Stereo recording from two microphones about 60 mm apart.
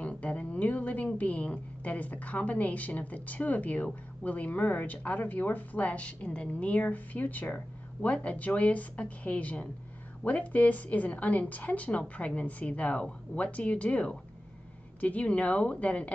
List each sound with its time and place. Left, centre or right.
0.0 s a woman's voice: left